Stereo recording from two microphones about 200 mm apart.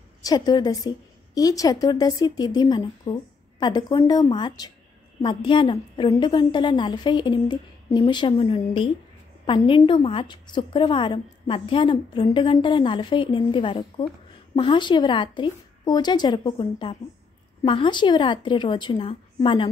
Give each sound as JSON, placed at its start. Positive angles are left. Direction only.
{"t": 0.2, "sound": "a woman's voice", "side_deg": 20}